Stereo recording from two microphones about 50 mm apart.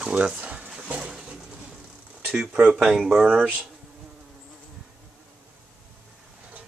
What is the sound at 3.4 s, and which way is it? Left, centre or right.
Speech, centre.